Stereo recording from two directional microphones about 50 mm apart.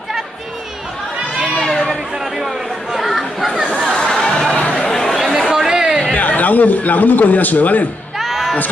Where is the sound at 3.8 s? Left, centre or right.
Centre.